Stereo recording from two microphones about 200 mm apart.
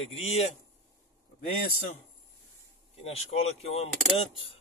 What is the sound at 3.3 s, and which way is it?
Speech, 40° left (ahead or behind).